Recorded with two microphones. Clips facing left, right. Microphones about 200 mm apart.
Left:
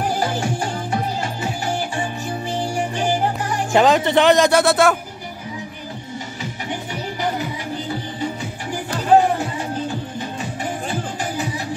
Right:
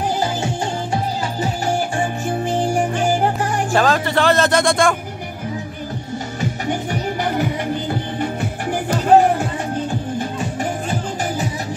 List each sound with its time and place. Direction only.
2.2 s music: 50° right (ahead or behind)
3.7 s speech: 20° left (ahead or behind)
6.7 s music: 50° right (ahead or behind)